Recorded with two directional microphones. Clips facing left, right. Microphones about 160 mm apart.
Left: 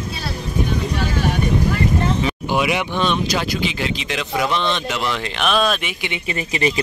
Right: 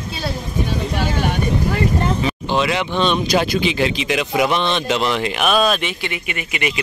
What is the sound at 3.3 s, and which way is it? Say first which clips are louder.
A man's voice: right 4 dB; 20° right (ahead or behind).